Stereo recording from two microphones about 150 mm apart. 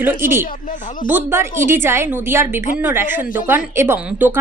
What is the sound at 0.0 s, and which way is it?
A woman's voice, 15° right (ahead or behind).